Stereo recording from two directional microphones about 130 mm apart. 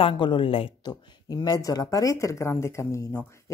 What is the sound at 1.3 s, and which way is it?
Speech, 30° left (ahead or behind).